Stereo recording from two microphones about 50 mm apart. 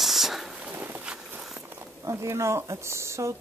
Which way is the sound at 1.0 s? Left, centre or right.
Centre.